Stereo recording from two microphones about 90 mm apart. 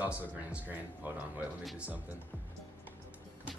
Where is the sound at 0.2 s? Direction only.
20° right (ahead or behind).